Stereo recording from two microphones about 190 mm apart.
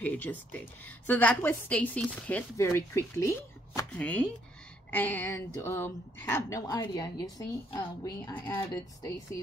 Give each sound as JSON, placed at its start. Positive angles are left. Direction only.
{"t": 0.0, "sound": "a woman's voice", "side_deg": 10}